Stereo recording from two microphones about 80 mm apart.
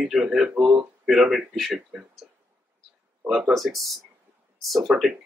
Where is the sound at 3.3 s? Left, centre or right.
Centre.